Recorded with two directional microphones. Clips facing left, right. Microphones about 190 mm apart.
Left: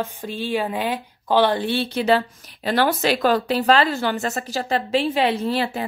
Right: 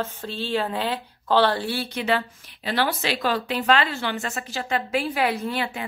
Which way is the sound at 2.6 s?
45° left (ahead or behind).